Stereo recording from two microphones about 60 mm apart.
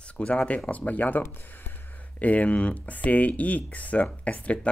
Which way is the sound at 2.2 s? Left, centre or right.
Left.